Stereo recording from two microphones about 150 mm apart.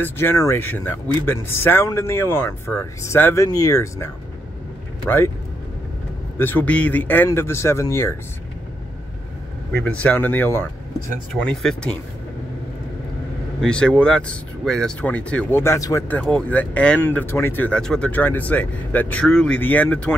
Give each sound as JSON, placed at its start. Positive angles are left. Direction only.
{"t": 0.0, "sound": "speech", "side_deg": 15}
{"t": 6.3, "sound": "speech", "side_deg": 15}
{"t": 9.8, "sound": "speech", "side_deg": 10}
{"t": 13.6, "sound": "speech", "side_deg": 5}
{"t": 16.2, "sound": "speech", "side_deg": 5}